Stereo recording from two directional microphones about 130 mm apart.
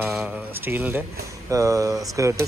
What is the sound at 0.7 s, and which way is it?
Speech, 15° right (ahead or behind).